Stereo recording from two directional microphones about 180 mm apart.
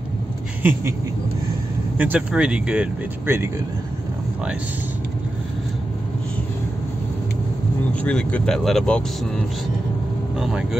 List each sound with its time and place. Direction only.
0.6 s a sound: 10° right (ahead or behind)
2.0 s speech: 10° right (ahead or behind)
8.0 s speech: 5° left (ahead or behind)
10.4 s speech: 5° right (ahead or behind)